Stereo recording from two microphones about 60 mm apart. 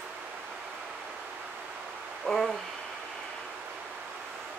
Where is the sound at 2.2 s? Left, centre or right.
Centre.